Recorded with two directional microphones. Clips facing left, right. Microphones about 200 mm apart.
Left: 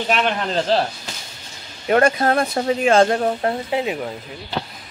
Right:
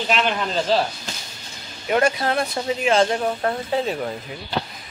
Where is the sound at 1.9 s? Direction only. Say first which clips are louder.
Left 4 dB; 50° left (ahead or behind).